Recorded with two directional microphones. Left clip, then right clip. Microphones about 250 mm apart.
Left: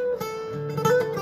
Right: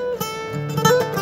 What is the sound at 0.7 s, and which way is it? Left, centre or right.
Music, centre.